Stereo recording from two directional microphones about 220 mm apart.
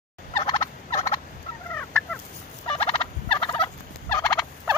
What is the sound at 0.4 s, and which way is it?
Fowl, 15° left (ahead or behind).